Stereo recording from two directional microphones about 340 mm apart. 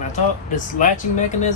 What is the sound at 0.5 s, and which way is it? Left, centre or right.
Speech, left.